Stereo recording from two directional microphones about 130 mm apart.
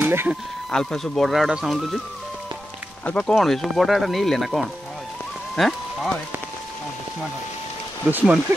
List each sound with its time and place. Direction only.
0.0 s a sound: 15° right (ahead or behind)
0.7 s speech: 5° left (ahead or behind)
3.1 s speech: 5° left (ahead or behind)
8.1 s speech: 15° right (ahead or behind)